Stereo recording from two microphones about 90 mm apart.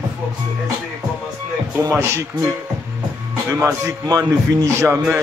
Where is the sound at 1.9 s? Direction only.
30° right (ahead or behind).